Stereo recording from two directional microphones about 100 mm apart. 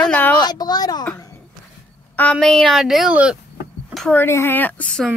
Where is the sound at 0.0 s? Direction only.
15° left (ahead or behind).